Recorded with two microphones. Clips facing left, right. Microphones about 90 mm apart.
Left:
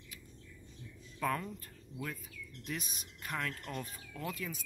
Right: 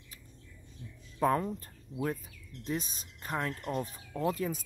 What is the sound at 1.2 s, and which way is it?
Speech, 35° right (ahead or behind).